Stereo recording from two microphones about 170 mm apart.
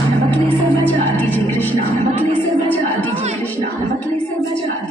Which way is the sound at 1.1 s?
10° left (ahead or behind).